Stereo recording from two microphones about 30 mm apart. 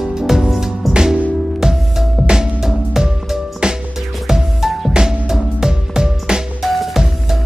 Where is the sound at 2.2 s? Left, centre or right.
Right.